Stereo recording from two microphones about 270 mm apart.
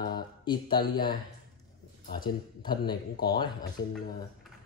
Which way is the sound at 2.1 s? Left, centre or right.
Centre.